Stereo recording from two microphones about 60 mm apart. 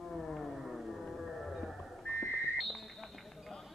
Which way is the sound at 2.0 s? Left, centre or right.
Left.